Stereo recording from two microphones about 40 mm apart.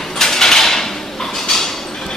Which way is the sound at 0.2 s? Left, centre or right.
Centre.